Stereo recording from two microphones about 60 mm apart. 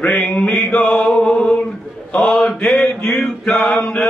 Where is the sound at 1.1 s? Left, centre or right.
Centre.